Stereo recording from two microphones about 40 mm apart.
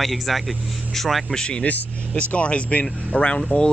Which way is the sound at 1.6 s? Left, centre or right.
Left.